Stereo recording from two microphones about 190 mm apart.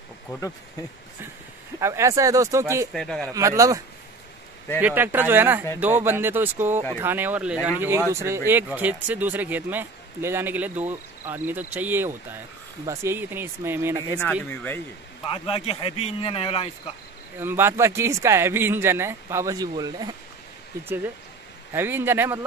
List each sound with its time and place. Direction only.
1.8 s speech: 15° right (ahead or behind)
2.9 s a man's voice: centre (ahead or behind)
3.2 s speech: 15° right (ahead or behind)
14.4 s speech: 10° left (ahead or behind)
15.2 s a man's voice: 30° left (ahead or behind)
17.4 s speech: 10° right (ahead or behind)